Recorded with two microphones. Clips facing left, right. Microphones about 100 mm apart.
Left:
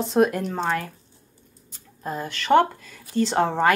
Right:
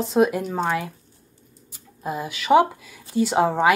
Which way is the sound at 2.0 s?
10° right (ahead or behind).